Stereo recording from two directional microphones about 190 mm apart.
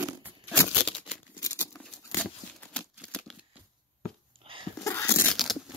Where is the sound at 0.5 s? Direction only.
5° left (ahead or behind).